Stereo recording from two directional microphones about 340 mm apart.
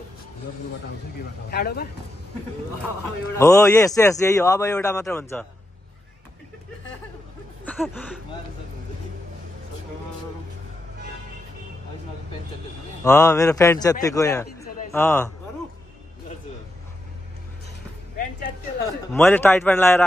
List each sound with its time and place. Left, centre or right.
1.5 s speech: left
3.3 s speech: centre
7.6 s a sound: centre
13.0 s speech: centre
19.1 s speech: centre